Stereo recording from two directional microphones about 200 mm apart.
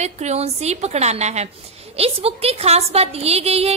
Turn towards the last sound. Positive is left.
turn(degrees=-30)  # may be behind; listen again after turning